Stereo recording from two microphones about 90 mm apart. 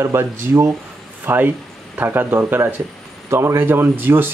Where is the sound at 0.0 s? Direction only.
30° right (ahead or behind).